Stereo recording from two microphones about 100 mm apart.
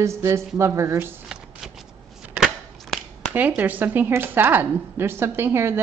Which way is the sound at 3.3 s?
15° right (ahead or behind).